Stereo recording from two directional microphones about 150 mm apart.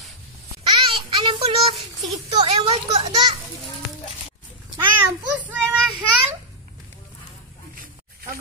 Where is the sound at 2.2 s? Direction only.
35° right (ahead or behind).